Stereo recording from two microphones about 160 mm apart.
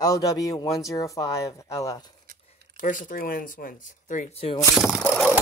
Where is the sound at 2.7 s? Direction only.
55° left (ahead or behind).